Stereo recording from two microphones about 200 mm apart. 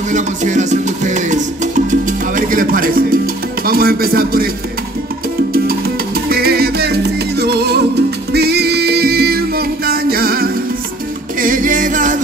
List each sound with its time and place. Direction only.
0.1 s music: 35° right (ahead or behind)
6.2 s music: 50° right (ahead or behind)